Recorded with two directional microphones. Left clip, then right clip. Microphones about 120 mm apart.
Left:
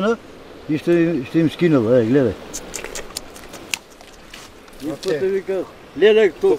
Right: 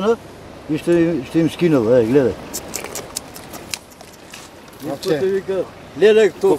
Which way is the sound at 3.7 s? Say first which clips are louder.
Left 4 dB; 15° right (ahead or behind).